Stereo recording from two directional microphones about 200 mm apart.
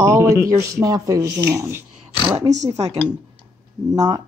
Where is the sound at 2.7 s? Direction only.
30° right (ahead or behind).